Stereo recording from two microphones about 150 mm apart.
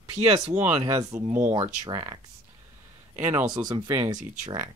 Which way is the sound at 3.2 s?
15° right (ahead or behind).